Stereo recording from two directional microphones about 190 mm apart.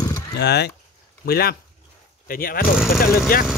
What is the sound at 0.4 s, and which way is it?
Speech, 60° left (ahead or behind).